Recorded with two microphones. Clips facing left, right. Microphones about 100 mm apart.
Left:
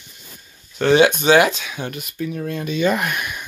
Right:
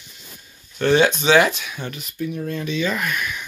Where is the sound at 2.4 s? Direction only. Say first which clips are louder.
Left 4 dB; 50° left (ahead or behind).